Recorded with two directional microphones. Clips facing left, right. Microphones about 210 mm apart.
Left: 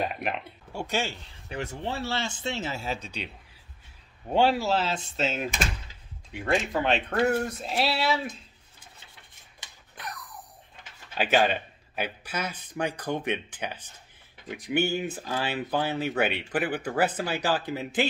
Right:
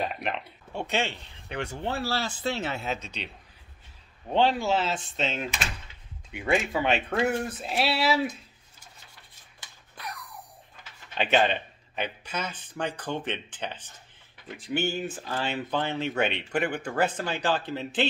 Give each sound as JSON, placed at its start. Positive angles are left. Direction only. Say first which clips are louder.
{"t": 0.0, "sound": "speech", "louder": "left 1 dB", "side_deg": 5}
{"t": 1.8, "sound": "speech", "louder": "right 2 dB", "side_deg": 0}
{"t": 2.7, "sound": "speech", "louder": "right 1 dB", "side_deg": 30}
{"t": 4.3, "sound": "speech", "louder": "left 1 dB", "side_deg": 10}
{"t": 11.1, "sound": "speech", "louder": "even", "side_deg": 5}